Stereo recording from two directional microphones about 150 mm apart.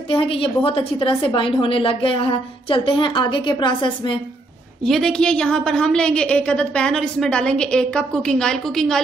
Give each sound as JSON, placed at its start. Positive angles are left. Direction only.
{"t": 0.1, "sound": "a woman's voice", "side_deg": 40}
{"t": 4.8, "sound": "a woman's voice", "side_deg": 0}